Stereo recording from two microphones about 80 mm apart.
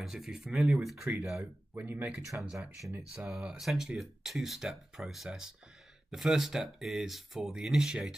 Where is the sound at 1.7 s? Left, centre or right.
Centre.